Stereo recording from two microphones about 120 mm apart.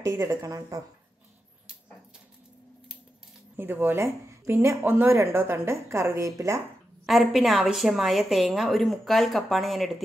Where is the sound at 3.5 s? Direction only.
15° right (ahead or behind).